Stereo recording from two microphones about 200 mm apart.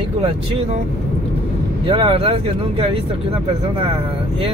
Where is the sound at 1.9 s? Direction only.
25° right (ahead or behind).